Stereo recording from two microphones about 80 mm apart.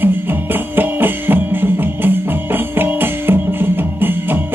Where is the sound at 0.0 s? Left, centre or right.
Right.